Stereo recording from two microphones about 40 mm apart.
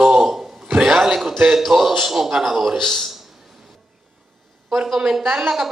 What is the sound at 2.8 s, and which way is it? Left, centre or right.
Speech, centre.